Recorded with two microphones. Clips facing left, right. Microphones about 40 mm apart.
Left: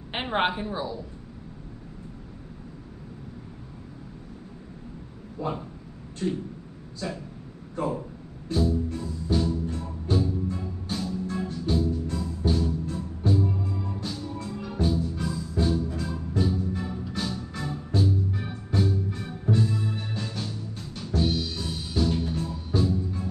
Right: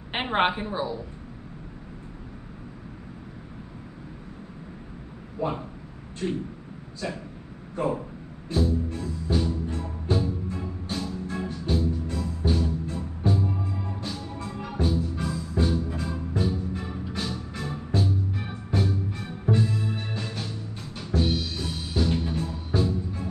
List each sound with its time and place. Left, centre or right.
0.1 s a woman's voice: centre
5.4 s speech: centre
7.7 s speech: centre
8.5 s music: centre